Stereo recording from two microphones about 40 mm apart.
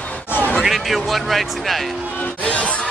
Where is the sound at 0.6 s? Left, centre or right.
Centre.